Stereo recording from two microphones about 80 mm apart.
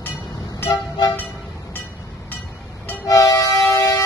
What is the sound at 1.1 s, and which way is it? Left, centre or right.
Music, left.